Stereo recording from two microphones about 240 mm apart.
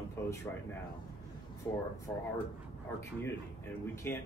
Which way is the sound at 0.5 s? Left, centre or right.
Centre.